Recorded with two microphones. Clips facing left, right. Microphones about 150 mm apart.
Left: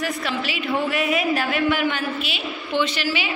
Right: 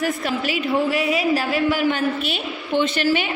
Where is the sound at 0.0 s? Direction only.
45° right (ahead or behind).